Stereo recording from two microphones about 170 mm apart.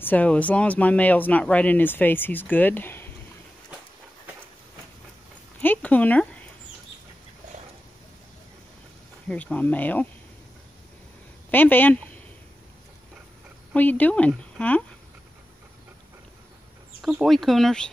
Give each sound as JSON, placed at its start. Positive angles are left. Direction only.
{"t": 0.0, "sound": "speech", "side_deg": 10}
{"t": 5.6, "sound": "a sound", "side_deg": 10}
{"t": 9.3, "sound": "speech", "side_deg": 10}
{"t": 11.5, "sound": "speech", "side_deg": 10}
{"t": 13.7, "sound": "speech", "side_deg": 10}
{"t": 17.0, "sound": "speech", "side_deg": 0}